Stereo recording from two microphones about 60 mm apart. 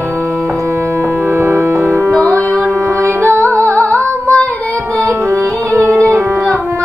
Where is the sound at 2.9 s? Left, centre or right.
Right.